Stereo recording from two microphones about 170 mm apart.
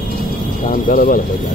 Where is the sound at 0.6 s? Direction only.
55° left (ahead or behind).